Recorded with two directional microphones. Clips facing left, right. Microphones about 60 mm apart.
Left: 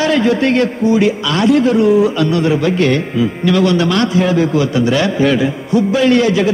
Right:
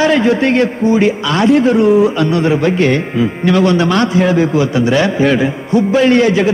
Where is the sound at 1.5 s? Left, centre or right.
Right.